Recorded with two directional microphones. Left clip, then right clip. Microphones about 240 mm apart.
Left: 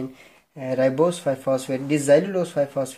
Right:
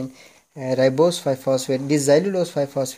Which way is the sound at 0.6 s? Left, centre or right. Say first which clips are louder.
Right 3 dB; right.